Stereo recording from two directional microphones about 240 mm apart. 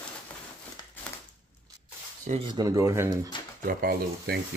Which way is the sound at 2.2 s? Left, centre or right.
Right.